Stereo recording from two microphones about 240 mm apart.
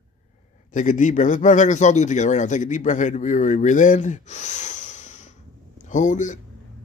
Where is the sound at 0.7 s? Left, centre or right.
Left.